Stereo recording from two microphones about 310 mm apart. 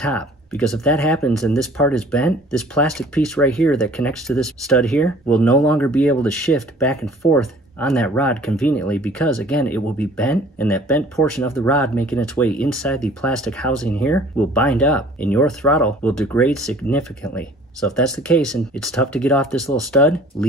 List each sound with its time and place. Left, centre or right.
0.0 s speech: centre